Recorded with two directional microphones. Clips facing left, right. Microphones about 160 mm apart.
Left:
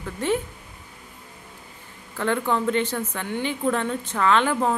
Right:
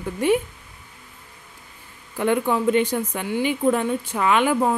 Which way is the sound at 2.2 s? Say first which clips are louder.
Right 3 dB; 15° right (ahead or behind).